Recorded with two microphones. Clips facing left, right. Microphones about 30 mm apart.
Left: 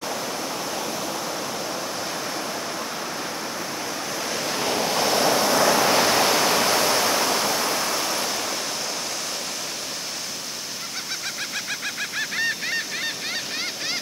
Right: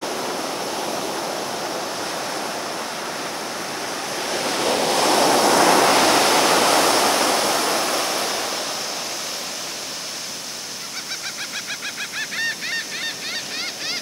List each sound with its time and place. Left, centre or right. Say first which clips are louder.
0.0 s pink noise: right 3 dB; centre
3.8 s waves: right 2 dB; centre
4.4 s waves: right 4 dB; right
6.9 s waterfall: right 3 dB; right
12.0 s honk: even; centre